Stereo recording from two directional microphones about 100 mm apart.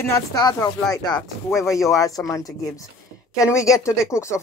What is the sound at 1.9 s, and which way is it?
Speech, 35° left (ahead or behind).